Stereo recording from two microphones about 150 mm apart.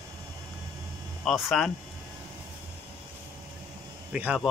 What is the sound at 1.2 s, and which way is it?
Speech, centre (ahead or behind).